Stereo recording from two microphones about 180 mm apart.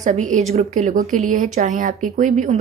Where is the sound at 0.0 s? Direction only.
40° right (ahead or behind).